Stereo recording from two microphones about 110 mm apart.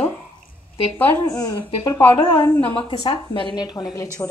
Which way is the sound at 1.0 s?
15° left (ahead or behind).